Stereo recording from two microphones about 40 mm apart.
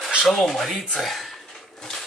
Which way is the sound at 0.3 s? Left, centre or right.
Centre.